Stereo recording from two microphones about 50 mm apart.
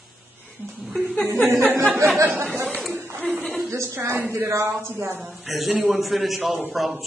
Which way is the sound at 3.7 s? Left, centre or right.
Right.